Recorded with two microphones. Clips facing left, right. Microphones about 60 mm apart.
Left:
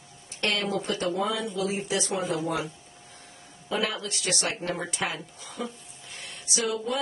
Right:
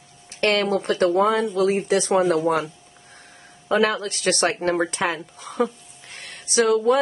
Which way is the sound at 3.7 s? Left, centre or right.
Right.